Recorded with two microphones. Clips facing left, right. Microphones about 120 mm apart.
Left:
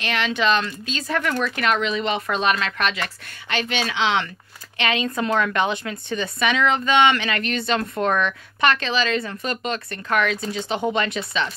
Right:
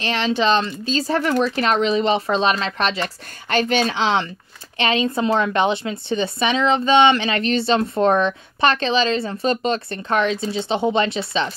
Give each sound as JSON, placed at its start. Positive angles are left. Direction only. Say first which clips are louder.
{"t": 0.0, "sound": "a woman's voice", "louder": "right 3 dB", "side_deg": -30}